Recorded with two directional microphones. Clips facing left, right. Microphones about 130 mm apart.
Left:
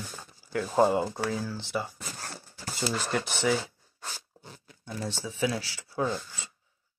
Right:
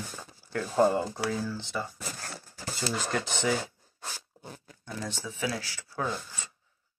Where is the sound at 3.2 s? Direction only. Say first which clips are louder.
Left 1 dB; 20° right (ahead or behind).